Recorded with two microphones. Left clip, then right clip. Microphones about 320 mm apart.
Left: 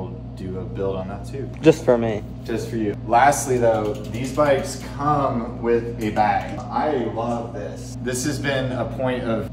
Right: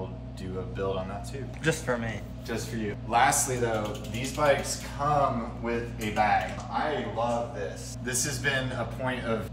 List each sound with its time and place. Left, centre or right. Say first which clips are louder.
0.7 s speech: left 5 dB; centre